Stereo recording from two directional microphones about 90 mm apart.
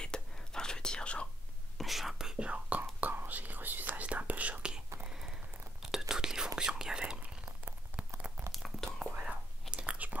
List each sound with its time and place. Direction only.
0.0 s whispering: 10° left (ahead or behind)
1.8 s whispering: centre (ahead or behind)
5.0 s a sound: 5° right (ahead or behind)
5.8 s whispering: 5° right (ahead or behind)
8.5 s a sound: centre (ahead or behind)
9.2 s whispering: 10° right (ahead or behind)